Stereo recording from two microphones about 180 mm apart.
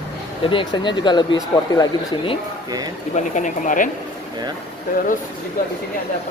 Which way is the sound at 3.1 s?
45° left (ahead or behind).